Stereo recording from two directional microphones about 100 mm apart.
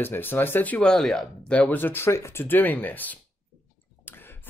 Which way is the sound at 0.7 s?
5° left (ahead or behind).